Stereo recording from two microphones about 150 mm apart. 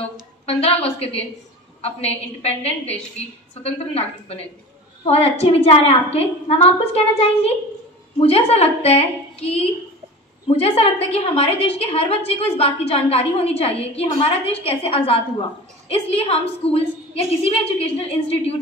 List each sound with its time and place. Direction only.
0.5 s a woman's voice: 40° left (ahead or behind)